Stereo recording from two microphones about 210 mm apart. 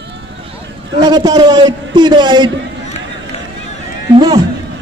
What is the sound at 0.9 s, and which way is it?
A man's voice, 20° right (ahead or behind).